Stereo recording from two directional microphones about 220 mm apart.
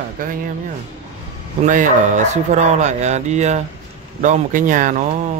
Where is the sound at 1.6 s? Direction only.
35° right (ahead or behind).